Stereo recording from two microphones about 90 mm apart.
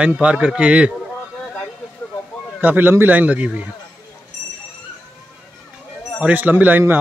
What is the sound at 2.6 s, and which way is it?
A man's voice, 20° right (ahead or behind).